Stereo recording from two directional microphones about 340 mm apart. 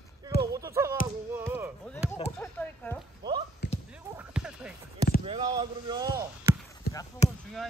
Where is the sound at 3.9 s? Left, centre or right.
Centre.